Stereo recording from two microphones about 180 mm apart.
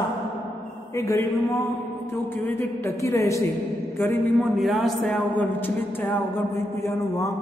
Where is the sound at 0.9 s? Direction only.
15° left (ahead or behind).